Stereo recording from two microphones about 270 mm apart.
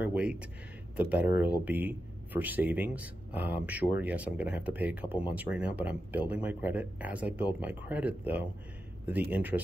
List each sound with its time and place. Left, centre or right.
0.0 s speech: centre